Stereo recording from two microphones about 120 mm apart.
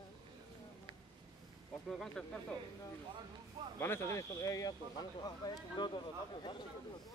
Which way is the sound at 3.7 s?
20° left (ahead or behind).